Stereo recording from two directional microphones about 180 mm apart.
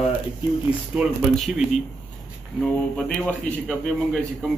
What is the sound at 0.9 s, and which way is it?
A man's voice, 5° right (ahead or behind).